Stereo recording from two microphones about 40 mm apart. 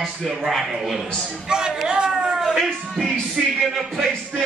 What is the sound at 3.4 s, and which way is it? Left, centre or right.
Music, centre.